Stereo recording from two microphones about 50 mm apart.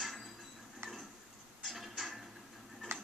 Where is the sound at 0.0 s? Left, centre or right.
Centre.